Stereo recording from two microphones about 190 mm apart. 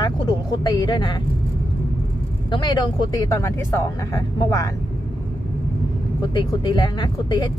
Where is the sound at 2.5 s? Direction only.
25° left (ahead or behind).